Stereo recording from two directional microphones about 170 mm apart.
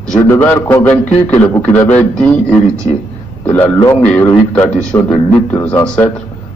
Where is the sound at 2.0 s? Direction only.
5° left (ahead or behind).